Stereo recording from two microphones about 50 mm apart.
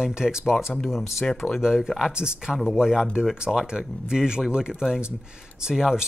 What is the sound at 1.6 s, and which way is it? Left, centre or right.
Speech, centre.